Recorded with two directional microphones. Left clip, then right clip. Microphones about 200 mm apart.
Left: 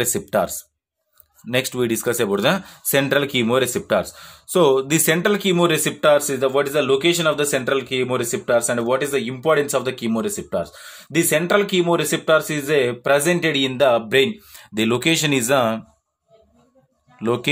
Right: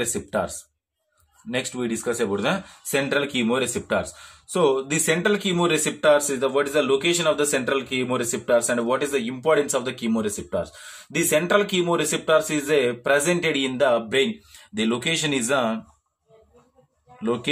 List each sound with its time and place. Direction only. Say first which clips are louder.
0.0 s speech: left 5 dB; 50° left (ahead or behind)
17.2 s speech: left 4 dB; 45° left (ahead or behind)